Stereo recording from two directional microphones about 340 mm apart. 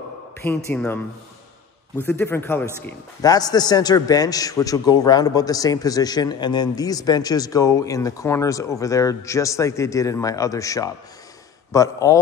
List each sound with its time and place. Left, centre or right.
0.7 s a man's voice: centre
2.0 s a man's voice: centre